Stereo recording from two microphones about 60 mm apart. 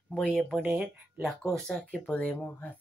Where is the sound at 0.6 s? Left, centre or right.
Right.